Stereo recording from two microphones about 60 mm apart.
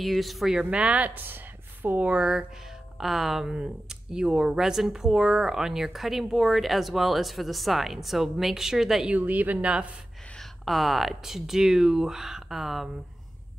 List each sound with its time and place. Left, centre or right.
0.0 s speech: centre
0.6 s speech: centre
3.0 s speech: centre
9.1 s speech: right
10.3 s speech: centre